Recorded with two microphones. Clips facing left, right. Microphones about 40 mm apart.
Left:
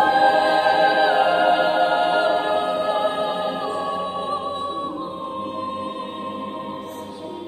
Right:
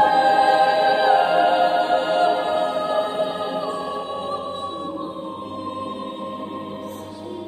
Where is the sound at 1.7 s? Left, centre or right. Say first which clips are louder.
Left 1 dB; left.